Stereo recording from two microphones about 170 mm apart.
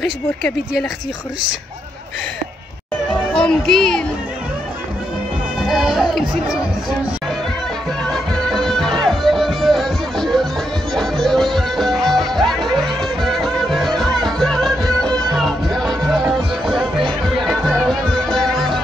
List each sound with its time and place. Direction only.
3.3 s speech: 5° left (ahead or behind)
5.6 s speech: centre (ahead or behind)
8.0 s music: centre (ahead or behind)
14.9 s music: 25° right (ahead or behind)
15.3 s music: centre (ahead or behind)